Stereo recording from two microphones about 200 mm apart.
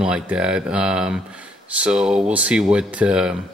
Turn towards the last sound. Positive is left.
turn(degrees=-5)  # may be behind; listen again after turning